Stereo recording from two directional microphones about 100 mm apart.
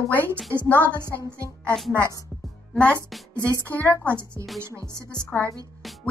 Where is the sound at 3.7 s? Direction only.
20° left (ahead or behind).